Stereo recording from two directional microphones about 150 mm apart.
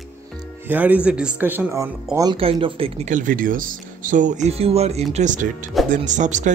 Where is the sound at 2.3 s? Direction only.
35° right (ahead or behind).